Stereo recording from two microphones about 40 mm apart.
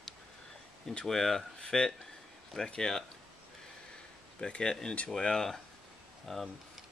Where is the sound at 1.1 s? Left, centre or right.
Centre.